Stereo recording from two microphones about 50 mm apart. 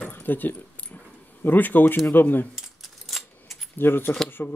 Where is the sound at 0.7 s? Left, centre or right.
Left.